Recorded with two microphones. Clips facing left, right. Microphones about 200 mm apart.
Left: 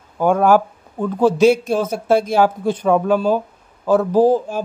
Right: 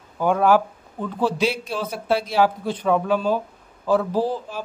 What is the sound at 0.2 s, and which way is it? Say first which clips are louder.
A man's voice: left 4 dB; 45° left (ahead or behind).